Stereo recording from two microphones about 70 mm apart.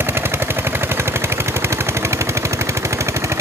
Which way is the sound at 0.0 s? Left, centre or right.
Right.